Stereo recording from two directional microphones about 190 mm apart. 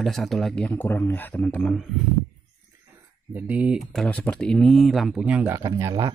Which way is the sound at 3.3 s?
5° right (ahead or behind).